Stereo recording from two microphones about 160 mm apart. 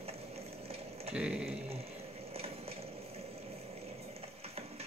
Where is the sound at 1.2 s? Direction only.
10° right (ahead or behind).